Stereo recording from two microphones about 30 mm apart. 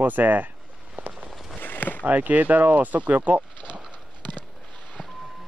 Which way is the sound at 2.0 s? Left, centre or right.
Right.